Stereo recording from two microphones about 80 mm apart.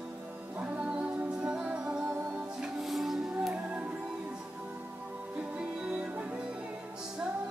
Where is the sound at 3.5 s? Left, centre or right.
Right.